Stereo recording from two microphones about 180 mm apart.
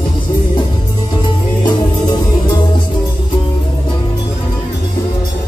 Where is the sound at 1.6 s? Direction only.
25° left (ahead or behind).